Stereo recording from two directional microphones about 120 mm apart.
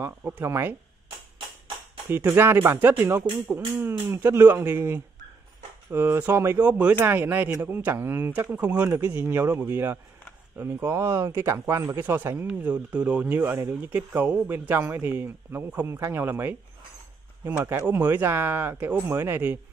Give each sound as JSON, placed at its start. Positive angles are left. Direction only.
{"t": 0.0, "sound": "speech", "side_deg": -20}
{"t": 2.0, "sound": "speech", "side_deg": -20}